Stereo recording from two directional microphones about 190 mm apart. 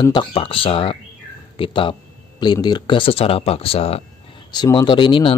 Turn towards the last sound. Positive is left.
turn(degrees=25)  # may be behind; listen again after turning